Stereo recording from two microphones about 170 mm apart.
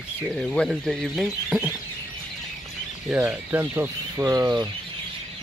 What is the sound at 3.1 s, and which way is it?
Speech, 10° right (ahead or behind).